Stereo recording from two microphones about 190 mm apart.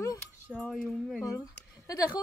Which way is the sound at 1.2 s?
20° left (ahead or behind).